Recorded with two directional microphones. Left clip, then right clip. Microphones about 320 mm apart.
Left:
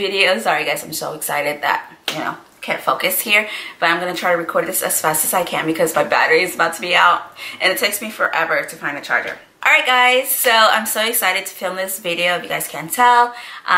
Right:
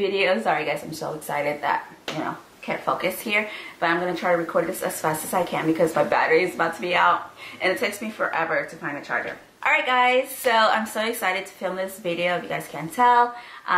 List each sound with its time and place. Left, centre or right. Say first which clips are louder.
0.0 s speech: left 5 dB; centre